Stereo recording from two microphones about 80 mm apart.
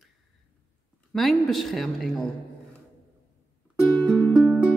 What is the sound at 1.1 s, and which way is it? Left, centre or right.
Speech, centre.